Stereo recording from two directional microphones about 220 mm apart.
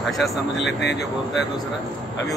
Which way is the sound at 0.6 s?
50° left (ahead or behind).